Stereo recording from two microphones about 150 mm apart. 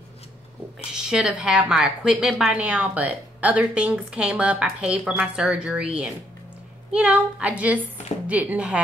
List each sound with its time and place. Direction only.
0.9 s a woman's voice: 5° right (ahead or behind)